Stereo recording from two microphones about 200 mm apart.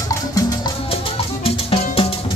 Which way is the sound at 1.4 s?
30° left (ahead or behind).